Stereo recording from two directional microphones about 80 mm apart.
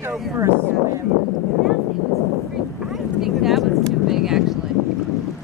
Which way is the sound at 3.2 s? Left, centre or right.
Centre.